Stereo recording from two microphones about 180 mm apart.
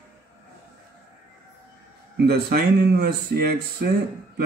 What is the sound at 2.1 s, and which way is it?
Speech, 60° right (ahead or behind).